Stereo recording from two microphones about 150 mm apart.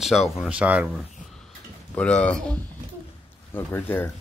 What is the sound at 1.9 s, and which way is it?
Speech, 10° left (ahead or behind).